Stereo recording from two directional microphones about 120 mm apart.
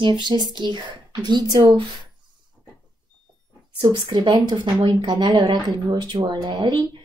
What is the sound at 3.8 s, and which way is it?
A woman's voice, 35° right (ahead or behind).